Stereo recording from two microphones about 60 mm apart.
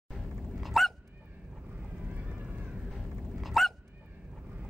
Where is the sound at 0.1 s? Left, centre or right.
Centre.